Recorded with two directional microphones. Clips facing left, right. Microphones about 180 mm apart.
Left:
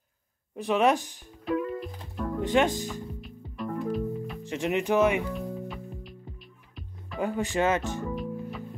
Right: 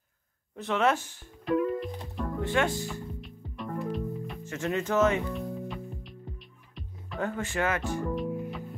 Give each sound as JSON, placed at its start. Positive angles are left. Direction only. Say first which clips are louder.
{"t": 0.6, "sound": "speech", "louder": "left 3 dB", "side_deg": 15}
{"t": 1.4, "sound": "music", "louder": "right 2 dB", "side_deg": 0}
{"t": 2.4, "sound": "speech", "louder": "left 4 dB", "side_deg": 15}
{"t": 3.2, "sound": "music", "louder": "left 3 dB", "side_deg": 0}
{"t": 4.5, "sound": "speech", "louder": "left 3 dB", "side_deg": 15}
{"t": 5.3, "sound": "music", "louder": "even", "side_deg": 0}
{"t": 7.2, "sound": "speech", "louder": "left 3 dB", "side_deg": 15}
{"t": 8.1, "sound": "music", "louder": "right 2 dB", "side_deg": 0}